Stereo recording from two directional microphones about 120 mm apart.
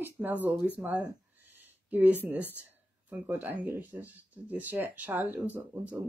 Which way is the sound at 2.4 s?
15° left (ahead or behind).